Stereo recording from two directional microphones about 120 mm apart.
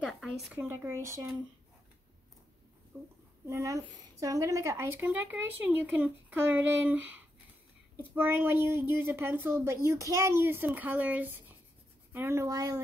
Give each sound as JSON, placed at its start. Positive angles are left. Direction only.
{"t": 0.0, "sound": "a sound", "side_deg": 0}
{"t": 0.6, "sound": "speech", "side_deg": -25}
{"t": 2.9, "sound": "speech", "side_deg": -20}